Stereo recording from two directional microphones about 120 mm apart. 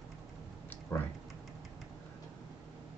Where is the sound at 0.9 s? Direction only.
15° left (ahead or behind).